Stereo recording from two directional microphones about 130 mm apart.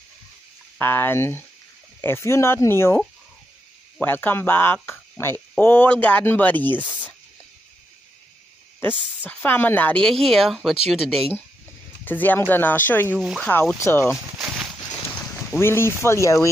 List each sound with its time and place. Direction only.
0.7 s speech: 15° left (ahead or behind)
4.0 s speech: 15° left (ahead or behind)
6.8 s a sound: 10° right (ahead or behind)
8.8 s speech: 15° left (ahead or behind)
12.0 s speech: 15° left (ahead or behind)
13.1 s speech: 5° right (ahead or behind)
13.4 s speech: 15° left (ahead or behind)
14.1 s a sound: 5° right (ahead or behind)
15.6 s speech: 20° left (ahead or behind)